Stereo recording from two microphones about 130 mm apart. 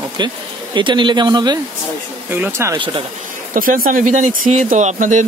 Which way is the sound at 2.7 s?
40° right (ahead or behind).